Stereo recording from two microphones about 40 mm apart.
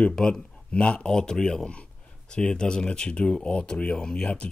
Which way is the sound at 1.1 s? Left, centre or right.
Centre.